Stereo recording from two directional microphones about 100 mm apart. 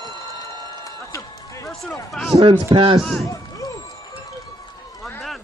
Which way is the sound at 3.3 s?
35° left (ahead or behind).